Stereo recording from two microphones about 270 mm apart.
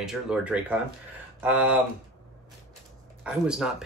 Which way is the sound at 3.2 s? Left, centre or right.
Centre.